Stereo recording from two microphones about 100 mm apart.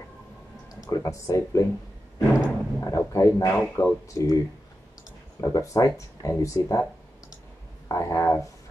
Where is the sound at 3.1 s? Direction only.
30° left (ahead or behind).